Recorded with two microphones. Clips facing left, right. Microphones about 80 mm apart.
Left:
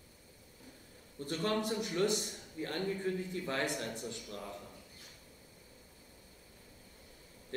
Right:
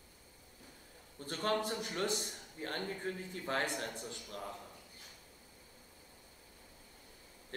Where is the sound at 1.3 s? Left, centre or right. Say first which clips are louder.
Left 1 dB; centre.